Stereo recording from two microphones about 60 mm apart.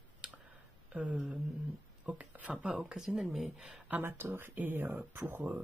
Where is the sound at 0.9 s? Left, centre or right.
Centre.